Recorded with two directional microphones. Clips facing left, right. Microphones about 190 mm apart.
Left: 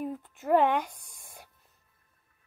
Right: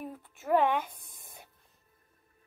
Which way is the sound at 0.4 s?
15° left (ahead or behind).